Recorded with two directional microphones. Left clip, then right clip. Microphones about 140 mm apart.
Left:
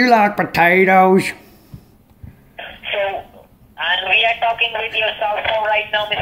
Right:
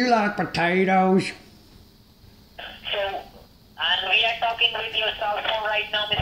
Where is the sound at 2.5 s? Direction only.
25° left (ahead or behind).